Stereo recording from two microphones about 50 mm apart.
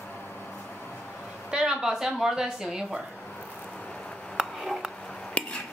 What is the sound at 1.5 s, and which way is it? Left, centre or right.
A woman's voice, centre.